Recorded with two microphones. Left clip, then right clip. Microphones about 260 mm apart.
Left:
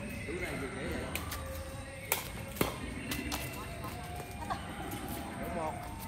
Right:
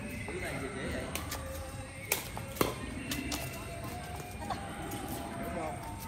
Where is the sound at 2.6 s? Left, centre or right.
Centre.